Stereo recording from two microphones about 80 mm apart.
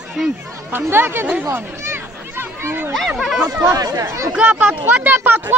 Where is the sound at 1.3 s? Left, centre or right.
Right.